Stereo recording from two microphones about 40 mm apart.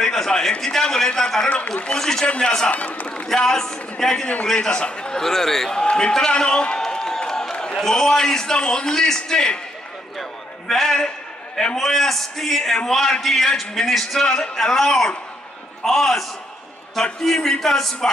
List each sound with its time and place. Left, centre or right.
0.0 s a sound: centre
0.6 s a man's voice: centre
2.2 s a man's voice: left
2.7 s a man's voice: left
3.3 s a man's voice: centre
4.2 s a man's voice: left
4.6 s a man's voice: left
5.2 s a man's voice: centre
5.8 s a man's voice: left
6.8 s a sound: centre
7.8 s a man's voice: centre
10.7 s a man's voice: centre
14.2 s a man's voice: centre